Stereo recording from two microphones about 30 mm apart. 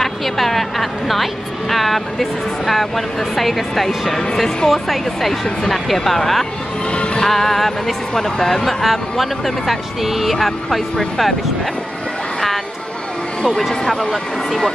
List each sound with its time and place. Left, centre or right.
0.0 s a sound: centre
3.3 s speech: centre
7.2 s music: centre
8.6 s speech: centre
14.1 s speech: centre